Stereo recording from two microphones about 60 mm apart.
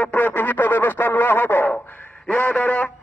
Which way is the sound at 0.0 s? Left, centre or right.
Left.